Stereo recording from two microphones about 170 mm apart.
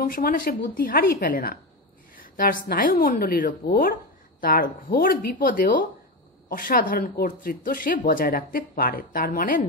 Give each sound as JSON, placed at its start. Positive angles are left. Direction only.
{"t": 0.0, "sound": "speech", "side_deg": 55}